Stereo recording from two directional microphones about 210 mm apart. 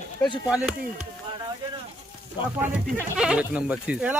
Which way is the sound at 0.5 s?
5° right (ahead or behind).